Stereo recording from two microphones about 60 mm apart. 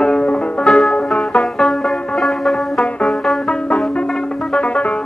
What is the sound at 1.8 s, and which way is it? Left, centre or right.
Music, centre.